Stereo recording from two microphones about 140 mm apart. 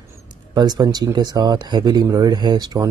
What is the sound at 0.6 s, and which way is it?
Speech, 30° right (ahead or behind).